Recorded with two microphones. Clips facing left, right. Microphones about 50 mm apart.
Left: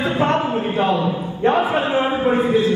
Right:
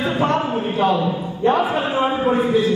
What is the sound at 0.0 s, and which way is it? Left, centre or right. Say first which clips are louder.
A man's voice: left 1 dB; left.